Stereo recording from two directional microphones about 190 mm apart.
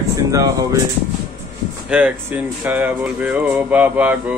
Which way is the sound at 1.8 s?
5° right (ahead or behind).